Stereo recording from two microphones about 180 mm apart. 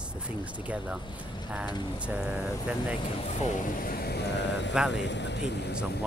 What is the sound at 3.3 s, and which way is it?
Speech, 50° left (ahead or behind).